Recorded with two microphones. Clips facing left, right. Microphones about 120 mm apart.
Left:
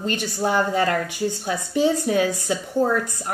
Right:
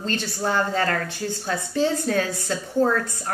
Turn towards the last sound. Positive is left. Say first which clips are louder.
# even
turn(degrees=15)  # may be behind; listen again after turning